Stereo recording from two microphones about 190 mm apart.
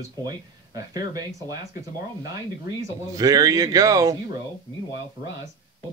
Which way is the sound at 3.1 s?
20° right (ahead or behind).